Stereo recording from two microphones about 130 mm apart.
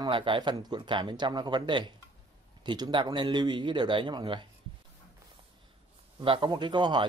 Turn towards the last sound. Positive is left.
turn(degrees=-35)  # may be behind; listen again after turning